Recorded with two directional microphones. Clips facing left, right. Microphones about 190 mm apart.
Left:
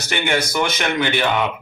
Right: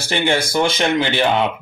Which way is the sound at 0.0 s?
30° right (ahead or behind).